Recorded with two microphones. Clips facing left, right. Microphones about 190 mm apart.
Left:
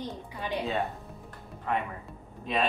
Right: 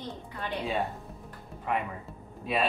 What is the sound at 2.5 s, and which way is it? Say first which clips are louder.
Speech: even; 5° right (ahead or behind).